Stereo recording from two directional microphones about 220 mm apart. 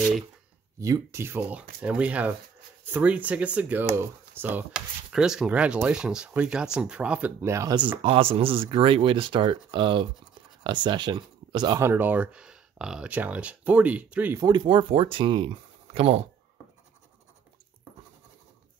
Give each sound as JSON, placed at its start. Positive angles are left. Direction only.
{"t": 0.7, "sound": "speech", "side_deg": -15}
{"t": 8.0, "sound": "speech", "side_deg": -25}